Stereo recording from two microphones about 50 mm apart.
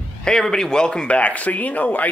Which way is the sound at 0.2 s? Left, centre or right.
Centre.